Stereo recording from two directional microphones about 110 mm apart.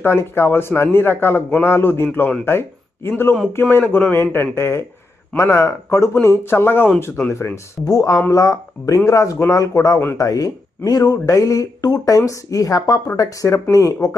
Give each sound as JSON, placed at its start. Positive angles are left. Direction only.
{"t": 0.0, "sound": "a man's voice", "side_deg": 20}
{"t": 7.8, "sound": "a man's voice", "side_deg": 35}